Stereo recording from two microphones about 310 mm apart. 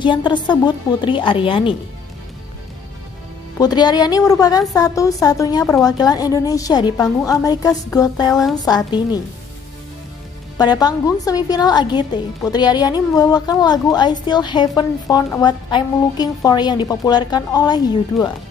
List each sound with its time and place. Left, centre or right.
0.0 s a woman's voice: centre
3.5 s a woman's voice: centre
10.6 s a woman's voice: centre